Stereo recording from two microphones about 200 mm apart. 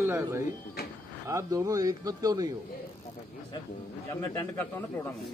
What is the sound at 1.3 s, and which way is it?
Speech, 15° right (ahead or behind).